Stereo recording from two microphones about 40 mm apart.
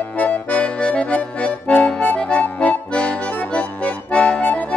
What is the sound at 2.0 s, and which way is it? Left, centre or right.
Music, left.